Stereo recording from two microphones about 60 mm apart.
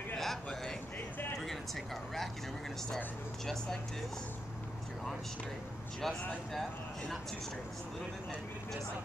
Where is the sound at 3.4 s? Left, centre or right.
Centre.